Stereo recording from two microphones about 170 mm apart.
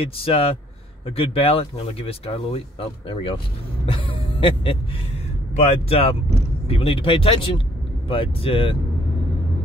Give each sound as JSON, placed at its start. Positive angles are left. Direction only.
{"t": 0.0, "sound": "speech", "side_deg": 35}
{"t": 3.8, "sound": "music", "side_deg": 30}
{"t": 5.6, "sound": "speech", "side_deg": 35}